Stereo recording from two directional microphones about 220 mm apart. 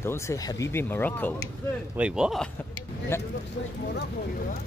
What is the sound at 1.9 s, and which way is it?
Speech, 5° right (ahead or behind).